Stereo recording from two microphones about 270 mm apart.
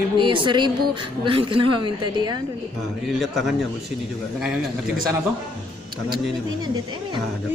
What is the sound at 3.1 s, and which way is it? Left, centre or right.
Speech, centre.